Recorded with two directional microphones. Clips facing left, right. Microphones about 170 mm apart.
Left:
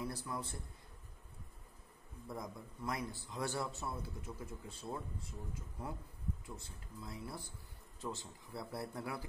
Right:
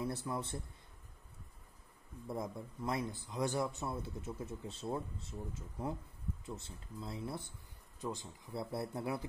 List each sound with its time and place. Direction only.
0.0 s a man's voice: 25° right (ahead or behind)
2.2 s a man's voice: 25° right (ahead or behind)